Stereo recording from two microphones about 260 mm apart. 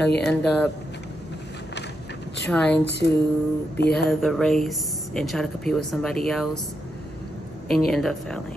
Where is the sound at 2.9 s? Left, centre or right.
Left.